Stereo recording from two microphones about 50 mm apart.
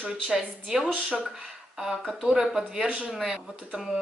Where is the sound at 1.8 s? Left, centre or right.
Centre.